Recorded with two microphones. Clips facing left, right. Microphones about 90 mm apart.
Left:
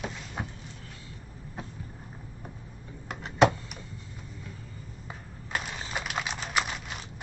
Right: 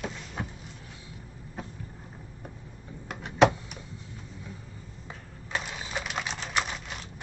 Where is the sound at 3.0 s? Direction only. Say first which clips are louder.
Right 1 dB; 5° left (ahead or behind).